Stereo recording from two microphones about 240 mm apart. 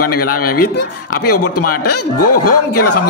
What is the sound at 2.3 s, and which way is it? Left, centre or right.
Speech, left.